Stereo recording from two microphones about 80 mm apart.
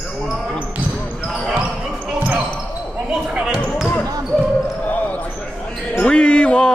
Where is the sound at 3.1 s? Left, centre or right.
Centre.